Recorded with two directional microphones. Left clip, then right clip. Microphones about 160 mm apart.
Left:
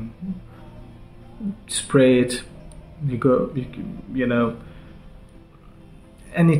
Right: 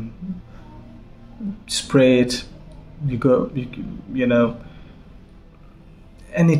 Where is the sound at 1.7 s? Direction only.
15° right (ahead or behind).